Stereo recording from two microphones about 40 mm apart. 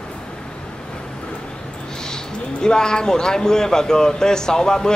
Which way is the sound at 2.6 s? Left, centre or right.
Centre.